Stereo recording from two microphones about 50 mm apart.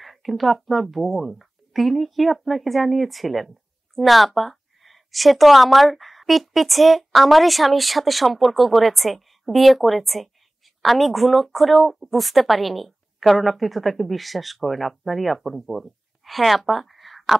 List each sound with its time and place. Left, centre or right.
0.0 s speech: centre